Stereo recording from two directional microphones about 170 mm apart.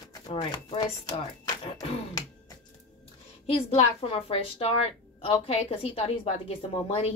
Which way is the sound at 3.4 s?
35° left (ahead or behind).